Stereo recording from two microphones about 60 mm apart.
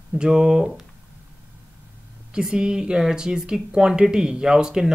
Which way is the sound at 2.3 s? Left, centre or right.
Centre.